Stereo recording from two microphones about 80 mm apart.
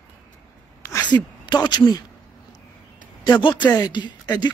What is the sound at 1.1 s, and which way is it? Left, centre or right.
Speech, left.